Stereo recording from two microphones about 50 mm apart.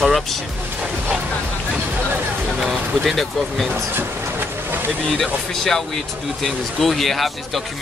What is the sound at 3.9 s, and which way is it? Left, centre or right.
Vehicle, right.